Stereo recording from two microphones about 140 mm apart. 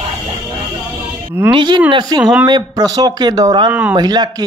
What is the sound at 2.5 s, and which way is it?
A man's voice, 25° right (ahead or behind).